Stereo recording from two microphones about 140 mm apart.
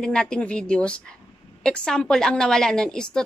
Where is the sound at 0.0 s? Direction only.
5° left (ahead or behind).